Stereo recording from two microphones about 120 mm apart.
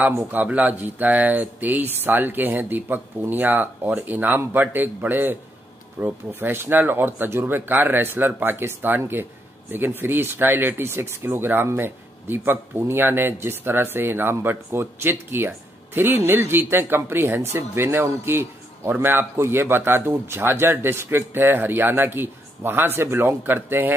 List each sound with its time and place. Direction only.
0.0 s speech: 20° right (ahead or behind)